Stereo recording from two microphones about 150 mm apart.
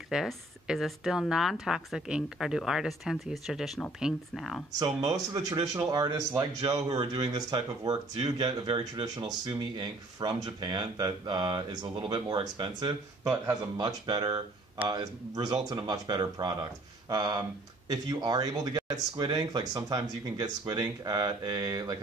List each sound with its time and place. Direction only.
0.1 s speech: 5° right (ahead or behind)
5.1 s speech: 25° right (ahead or behind)
13.2 s speech: 20° right (ahead or behind)